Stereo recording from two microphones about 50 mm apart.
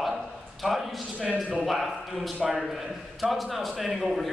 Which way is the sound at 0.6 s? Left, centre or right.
Centre.